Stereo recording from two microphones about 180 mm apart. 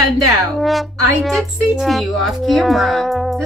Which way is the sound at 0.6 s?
Centre (ahead or behind).